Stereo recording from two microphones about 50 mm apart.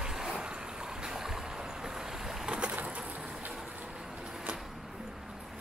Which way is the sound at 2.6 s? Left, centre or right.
Right.